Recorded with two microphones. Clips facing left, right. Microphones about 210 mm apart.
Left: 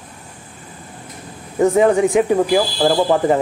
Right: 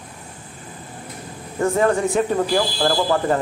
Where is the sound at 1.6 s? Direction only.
15° left (ahead or behind).